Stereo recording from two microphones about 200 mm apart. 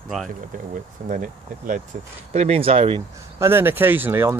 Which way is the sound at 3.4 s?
10° right (ahead or behind).